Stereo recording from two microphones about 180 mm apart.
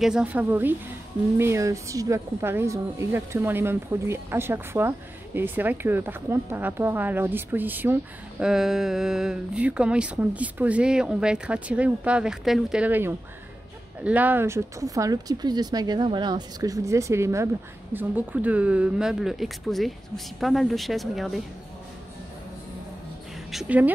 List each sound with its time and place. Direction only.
0.0 s a woman's voice: 5° right (ahead or behind)
23.5 s speech: 5° right (ahead or behind)